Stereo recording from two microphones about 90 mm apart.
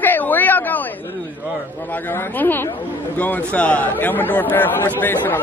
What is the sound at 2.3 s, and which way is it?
A man's voice, 20° left (ahead or behind).